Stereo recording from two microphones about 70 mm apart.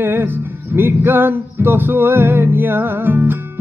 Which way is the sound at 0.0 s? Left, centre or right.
Right.